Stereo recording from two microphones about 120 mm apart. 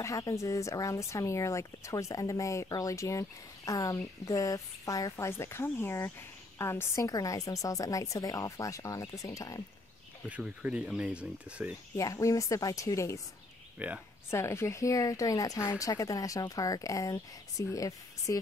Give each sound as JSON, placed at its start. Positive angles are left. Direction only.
{"t": 0.0, "sound": "speech", "side_deg": 25}
{"t": 10.2, "sound": "speech", "side_deg": -10}
{"t": 12.0, "sound": "speech", "side_deg": 25}
{"t": 13.7, "sound": "speech", "side_deg": -10}
{"t": 14.3, "sound": "speech", "side_deg": 20}